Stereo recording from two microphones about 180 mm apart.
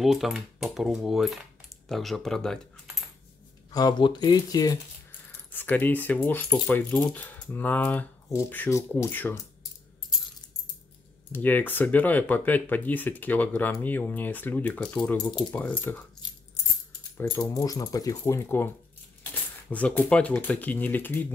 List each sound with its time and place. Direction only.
0.0 s speech: centre (ahead or behind)
3.7 s speech: 25° left (ahead or behind)
5.5 s speech: 10° left (ahead or behind)
11.3 s speech: 10° left (ahead or behind)
17.2 s speech: 20° left (ahead or behind)
19.7 s speech: 10° left (ahead or behind)